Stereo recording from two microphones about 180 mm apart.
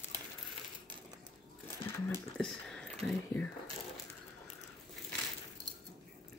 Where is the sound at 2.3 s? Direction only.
5° left (ahead or behind).